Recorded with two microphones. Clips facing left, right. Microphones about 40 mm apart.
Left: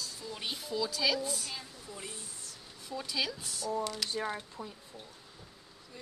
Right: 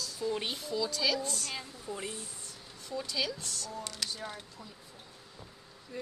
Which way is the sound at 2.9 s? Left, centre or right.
Centre.